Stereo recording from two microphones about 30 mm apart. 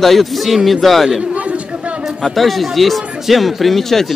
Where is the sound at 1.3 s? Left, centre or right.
Right.